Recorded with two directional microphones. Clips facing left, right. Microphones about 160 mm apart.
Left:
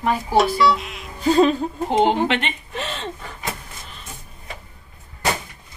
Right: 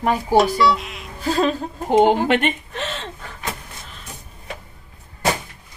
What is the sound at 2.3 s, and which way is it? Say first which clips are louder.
Speech: right 5 dB; 45° right (ahead or behind).